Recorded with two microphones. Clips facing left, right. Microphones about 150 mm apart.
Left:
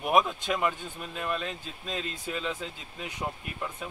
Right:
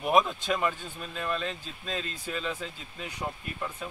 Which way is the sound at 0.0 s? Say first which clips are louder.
Even; 10° left (ahead or behind).